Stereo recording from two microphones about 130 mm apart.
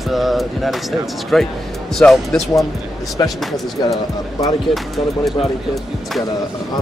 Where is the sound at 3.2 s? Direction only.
30° left (ahead or behind).